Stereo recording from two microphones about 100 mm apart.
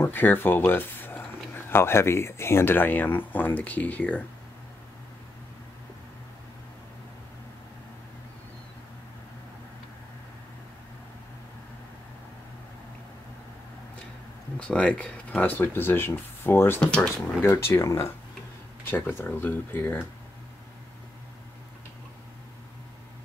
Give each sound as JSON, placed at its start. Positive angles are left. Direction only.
{"t": 0.0, "sound": "speech", "side_deg": 20}
{"t": 14.6, "sound": "speech", "side_deg": 10}
{"t": 16.8, "sound": "speech", "side_deg": 10}
{"t": 17.4, "sound": "speech", "side_deg": 25}